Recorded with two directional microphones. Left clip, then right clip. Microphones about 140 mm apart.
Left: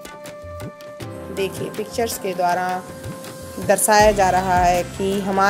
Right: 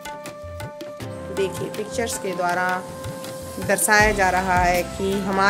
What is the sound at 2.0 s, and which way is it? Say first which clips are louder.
Speech: left 3 dB; 10° left (ahead or behind).